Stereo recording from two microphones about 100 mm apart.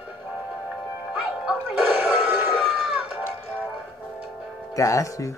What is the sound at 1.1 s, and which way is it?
Music, 5° right (ahead or behind).